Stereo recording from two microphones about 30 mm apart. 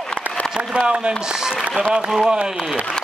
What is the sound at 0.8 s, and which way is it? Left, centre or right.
Speech, right.